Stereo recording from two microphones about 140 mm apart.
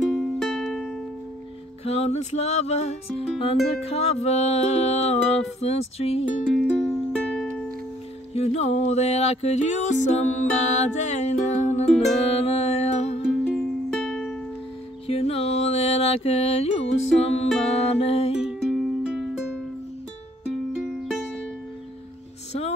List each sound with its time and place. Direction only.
0.1 s music: 5° left (ahead or behind)
1.9 s music: 50° left (ahead or behind)
6.4 s music: centre (ahead or behind)
8.3 s music: 50° left (ahead or behind)
13.4 s music: 5° left (ahead or behind)
15.0 s music: 45° left (ahead or behind)
18.4 s music: centre (ahead or behind)
22.5 s music: 50° left (ahead or behind)